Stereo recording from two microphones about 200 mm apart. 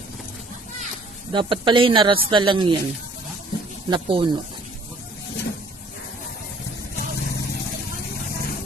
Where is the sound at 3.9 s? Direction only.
25° right (ahead or behind).